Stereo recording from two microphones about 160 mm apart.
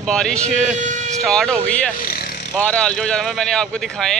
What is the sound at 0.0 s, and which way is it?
Speech, 5° left (ahead or behind).